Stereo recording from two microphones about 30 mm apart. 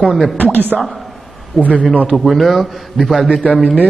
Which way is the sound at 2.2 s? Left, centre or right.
Centre.